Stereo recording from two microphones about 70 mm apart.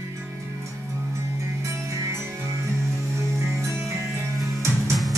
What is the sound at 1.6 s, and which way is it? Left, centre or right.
Music, right.